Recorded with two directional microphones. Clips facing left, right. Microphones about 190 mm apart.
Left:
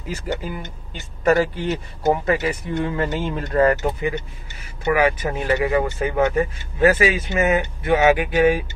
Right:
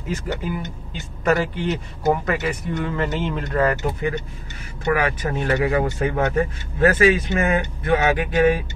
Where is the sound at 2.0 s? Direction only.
30° left (ahead or behind).